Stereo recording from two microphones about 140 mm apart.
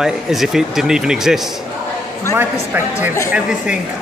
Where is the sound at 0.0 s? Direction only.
Centre (ahead or behind).